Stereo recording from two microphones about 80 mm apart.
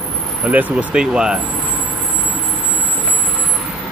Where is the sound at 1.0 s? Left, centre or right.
Centre.